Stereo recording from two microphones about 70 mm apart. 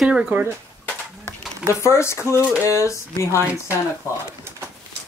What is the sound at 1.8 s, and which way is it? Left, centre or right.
Speech, left.